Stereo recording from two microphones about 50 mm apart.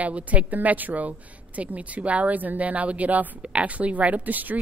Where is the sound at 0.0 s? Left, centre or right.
Right.